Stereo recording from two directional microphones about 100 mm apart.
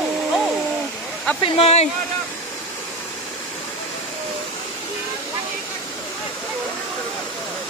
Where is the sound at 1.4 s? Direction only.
80° left.